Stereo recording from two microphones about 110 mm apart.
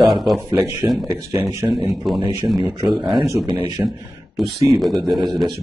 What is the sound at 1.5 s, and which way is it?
Speech, 30° right (ahead or behind).